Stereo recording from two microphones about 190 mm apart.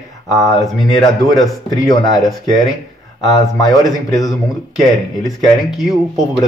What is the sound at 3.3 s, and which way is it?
Speech, 20° left (ahead or behind).